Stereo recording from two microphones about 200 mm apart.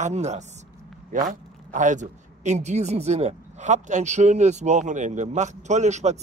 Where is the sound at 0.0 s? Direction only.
35° right (ahead or behind).